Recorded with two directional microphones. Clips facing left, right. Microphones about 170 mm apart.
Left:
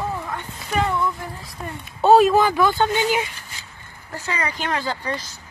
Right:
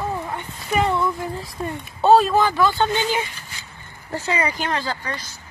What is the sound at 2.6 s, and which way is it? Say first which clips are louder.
Speech: even; 15° left (ahead or behind).